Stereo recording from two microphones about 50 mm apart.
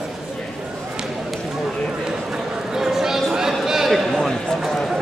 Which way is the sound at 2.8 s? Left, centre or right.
Centre.